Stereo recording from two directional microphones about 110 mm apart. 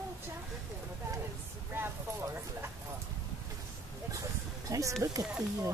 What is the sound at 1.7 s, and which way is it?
Speech, 25° right (ahead or behind).